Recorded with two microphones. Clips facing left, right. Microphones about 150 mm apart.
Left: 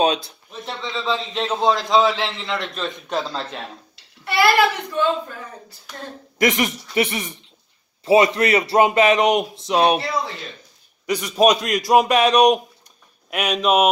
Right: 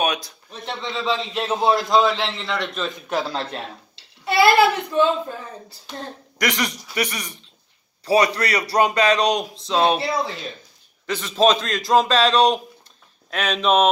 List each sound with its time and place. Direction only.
0.0 s a man's voice: 30° left (ahead or behind)
0.5 s a man's voice: centre (ahead or behind)
3.3 s a woman's voice: 20° right (ahead or behind)
6.3 s a man's voice: 20° left (ahead or behind)
11.1 s a man's voice: 15° left (ahead or behind)